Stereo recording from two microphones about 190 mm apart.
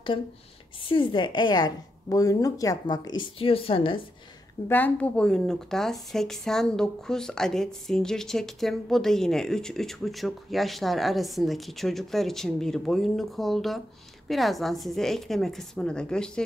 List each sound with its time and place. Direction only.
0.8 s a woman's voice: 25° left (ahead or behind)
4.6 s a woman's voice: 10° left (ahead or behind)